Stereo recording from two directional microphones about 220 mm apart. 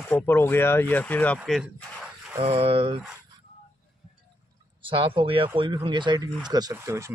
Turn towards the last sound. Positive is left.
turn(degrees=-15)  # may be behind; listen again after turning